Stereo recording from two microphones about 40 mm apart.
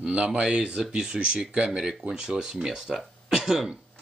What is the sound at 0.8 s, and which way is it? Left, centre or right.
Speech, centre.